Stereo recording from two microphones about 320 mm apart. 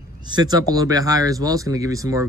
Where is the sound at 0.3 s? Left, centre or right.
Centre.